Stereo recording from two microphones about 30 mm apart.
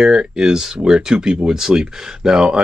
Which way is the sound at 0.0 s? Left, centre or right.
Right.